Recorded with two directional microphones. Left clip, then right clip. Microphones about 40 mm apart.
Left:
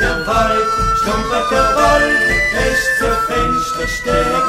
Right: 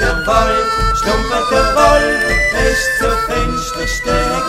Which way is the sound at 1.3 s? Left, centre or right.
Centre.